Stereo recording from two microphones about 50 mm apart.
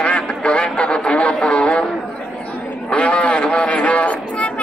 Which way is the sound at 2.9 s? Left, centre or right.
Left.